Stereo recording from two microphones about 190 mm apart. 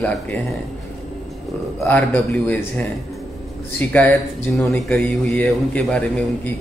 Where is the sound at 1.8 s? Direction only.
10° left (ahead or behind).